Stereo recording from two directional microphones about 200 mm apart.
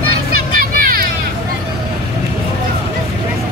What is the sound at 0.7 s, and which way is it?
Hubbub, 45° right (ahead or behind).